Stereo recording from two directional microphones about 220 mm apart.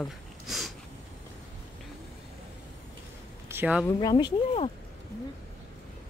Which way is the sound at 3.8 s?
20° left (ahead or behind).